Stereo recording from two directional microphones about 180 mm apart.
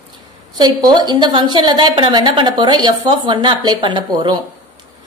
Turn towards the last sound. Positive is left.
turn(degrees=-25)  # may be behind; listen again after turning